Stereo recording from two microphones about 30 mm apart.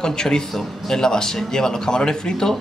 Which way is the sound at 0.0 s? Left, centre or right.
Left.